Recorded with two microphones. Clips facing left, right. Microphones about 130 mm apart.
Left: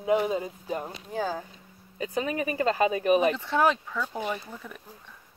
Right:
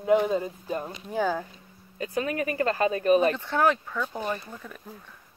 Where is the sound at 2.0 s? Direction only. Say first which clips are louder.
Right 1 dB; 15° left (ahead or behind).